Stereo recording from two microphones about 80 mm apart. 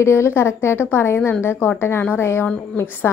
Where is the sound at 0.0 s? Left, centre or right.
Left.